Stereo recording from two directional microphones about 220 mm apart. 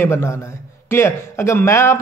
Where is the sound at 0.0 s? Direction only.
10° left (ahead or behind).